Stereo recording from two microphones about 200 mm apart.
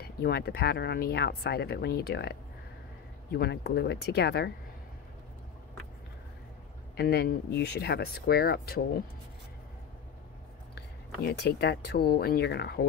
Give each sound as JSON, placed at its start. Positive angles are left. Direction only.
{"t": 0.0, "sound": "speech", "side_deg": 55}
{"t": 7.0, "sound": "speech", "side_deg": 55}
{"t": 11.2, "sound": "speech", "side_deg": 55}